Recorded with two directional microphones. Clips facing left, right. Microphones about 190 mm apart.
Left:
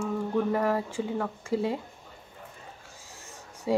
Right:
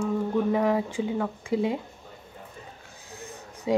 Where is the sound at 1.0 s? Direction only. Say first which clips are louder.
Right 3 dB; 5° right (ahead or behind).